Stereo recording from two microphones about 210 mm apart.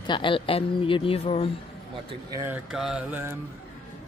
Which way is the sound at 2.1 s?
15° right (ahead or behind).